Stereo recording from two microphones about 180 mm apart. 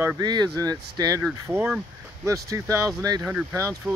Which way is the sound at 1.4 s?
10° right (ahead or behind).